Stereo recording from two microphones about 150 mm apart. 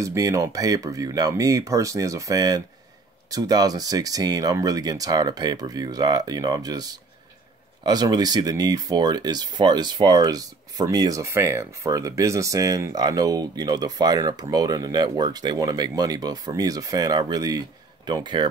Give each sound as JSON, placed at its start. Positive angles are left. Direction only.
{"t": 0.0, "sound": "speech", "side_deg": -20}